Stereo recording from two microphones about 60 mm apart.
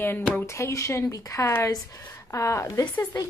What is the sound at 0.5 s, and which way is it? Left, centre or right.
Speech, left.